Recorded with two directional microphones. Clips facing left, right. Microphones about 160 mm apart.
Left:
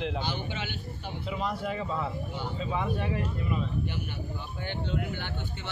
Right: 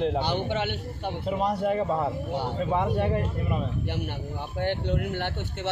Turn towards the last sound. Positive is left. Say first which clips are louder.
# right 6 dB
turn(degrees=-75)  # may be behind; listen again after turning